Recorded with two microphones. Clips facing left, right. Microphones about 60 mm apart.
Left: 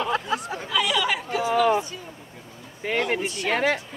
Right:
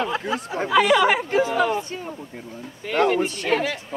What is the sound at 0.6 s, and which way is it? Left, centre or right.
Speech, right.